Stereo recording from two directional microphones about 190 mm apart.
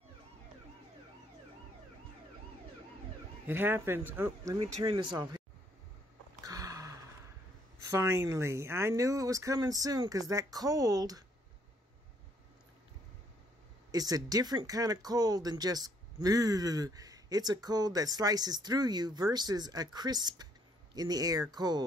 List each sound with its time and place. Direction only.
3.4 s speech: 10° right (ahead or behind)
4.8 s speech: 25° right (ahead or behind)
6.4 s a sound: 20° right (ahead or behind)
7.8 s speech: 15° right (ahead or behind)
13.9 s speech: 20° right (ahead or behind)